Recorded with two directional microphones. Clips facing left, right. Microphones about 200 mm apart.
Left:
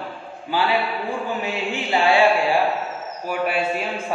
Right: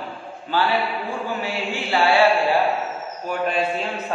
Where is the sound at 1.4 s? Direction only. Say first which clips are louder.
Left 1 dB; 20° left (ahead or behind).